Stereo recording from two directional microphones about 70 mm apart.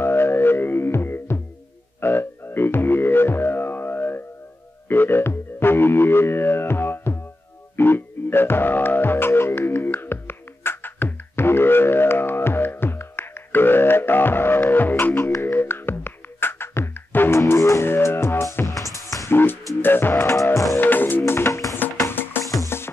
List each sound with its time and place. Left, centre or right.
0.0 s music: left
15.1 s music: left
18.9 s music: left
19.3 s music: left
20.7 s music: left
21.2 s music: left
22.1 s music: left